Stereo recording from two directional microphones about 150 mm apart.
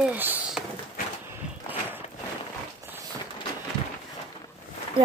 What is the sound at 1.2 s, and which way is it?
Walk, 15° right (ahead or behind).